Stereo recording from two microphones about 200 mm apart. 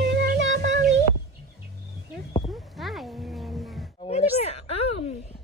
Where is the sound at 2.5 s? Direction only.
Centre (ahead or behind).